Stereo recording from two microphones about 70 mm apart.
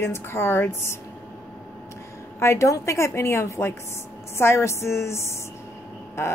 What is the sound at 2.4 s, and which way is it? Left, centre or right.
A woman's voice, left.